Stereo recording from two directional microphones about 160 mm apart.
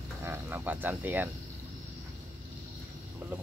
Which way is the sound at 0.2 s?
15° right (ahead or behind).